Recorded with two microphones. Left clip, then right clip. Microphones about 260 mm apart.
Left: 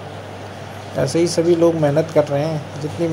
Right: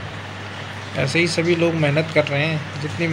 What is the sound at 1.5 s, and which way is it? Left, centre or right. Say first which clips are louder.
Speech: left 6 dB; centre.